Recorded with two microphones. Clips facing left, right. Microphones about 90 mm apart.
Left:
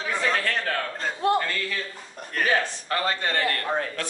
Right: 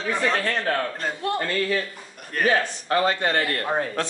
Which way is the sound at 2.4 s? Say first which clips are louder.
Right 3 dB; 25° right (ahead or behind).